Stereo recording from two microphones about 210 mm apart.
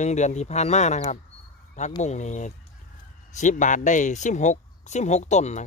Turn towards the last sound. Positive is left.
turn(degrees=35)  # may be behind; listen again after turning